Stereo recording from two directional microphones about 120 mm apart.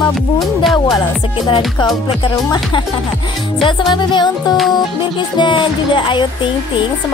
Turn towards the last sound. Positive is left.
turn(degrees=40)  # may be behind; listen again after turning